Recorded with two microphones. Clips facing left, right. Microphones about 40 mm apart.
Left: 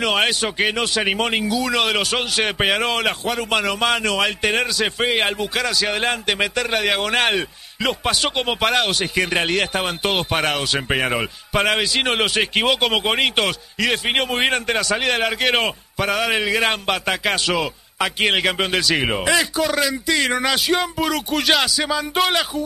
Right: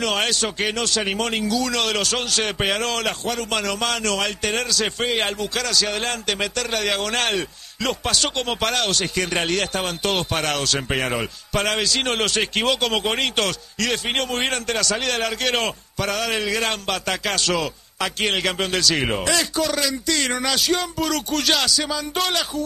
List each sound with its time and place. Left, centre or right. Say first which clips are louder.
0.0 s a man's voice: left 3 dB; centre